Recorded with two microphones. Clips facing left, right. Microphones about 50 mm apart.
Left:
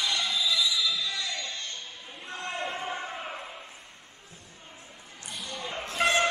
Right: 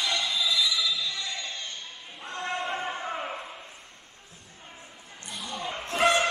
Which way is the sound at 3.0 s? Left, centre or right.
Right.